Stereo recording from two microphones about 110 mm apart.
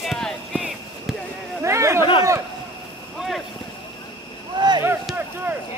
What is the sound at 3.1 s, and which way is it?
Boat, centre (ahead or behind).